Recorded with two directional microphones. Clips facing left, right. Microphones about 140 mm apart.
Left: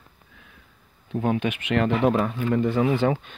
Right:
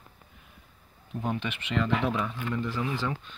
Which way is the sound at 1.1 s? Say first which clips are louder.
Left 8 dB; 70° left (ahead or behind).